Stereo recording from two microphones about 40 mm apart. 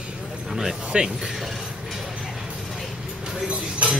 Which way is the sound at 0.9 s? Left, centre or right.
Right.